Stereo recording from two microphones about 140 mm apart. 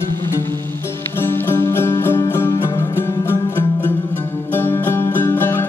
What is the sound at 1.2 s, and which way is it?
Music, 15° left (ahead or behind).